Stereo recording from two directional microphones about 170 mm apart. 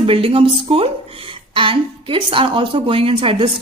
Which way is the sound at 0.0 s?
30° right (ahead or behind).